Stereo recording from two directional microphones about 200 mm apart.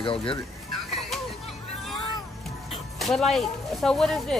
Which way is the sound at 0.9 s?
Centre (ahead or behind).